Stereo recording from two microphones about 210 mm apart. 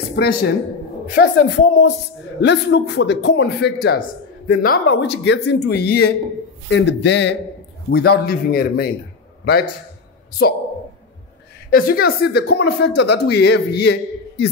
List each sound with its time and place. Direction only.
0.1 s a woman's voice: 50° left (ahead or behind)
11.7 s speech: 45° left (ahead or behind)